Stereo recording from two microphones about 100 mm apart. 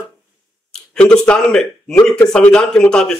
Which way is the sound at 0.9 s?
10° left (ahead or behind).